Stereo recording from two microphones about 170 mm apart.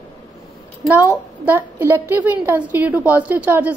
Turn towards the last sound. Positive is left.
turn(degrees=-10)  # may be behind; listen again after turning